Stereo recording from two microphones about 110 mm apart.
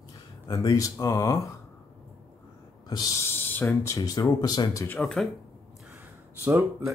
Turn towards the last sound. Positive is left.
turn(degrees=-20)  # may be behind; listen again after turning